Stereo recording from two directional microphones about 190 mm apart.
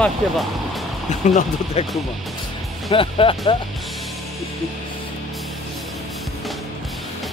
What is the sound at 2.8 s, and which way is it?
Speech, 30° left (ahead or behind).